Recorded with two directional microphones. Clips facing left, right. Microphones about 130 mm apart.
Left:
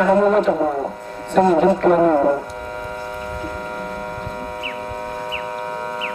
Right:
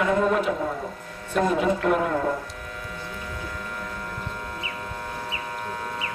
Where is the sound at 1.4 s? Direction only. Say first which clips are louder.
Left 8 dB; 35° left (ahead or behind).